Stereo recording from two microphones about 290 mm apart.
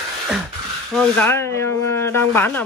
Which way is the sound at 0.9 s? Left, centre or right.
Centre.